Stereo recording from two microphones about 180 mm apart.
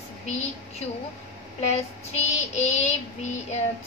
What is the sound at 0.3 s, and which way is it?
Speech, 40° left (ahead or behind).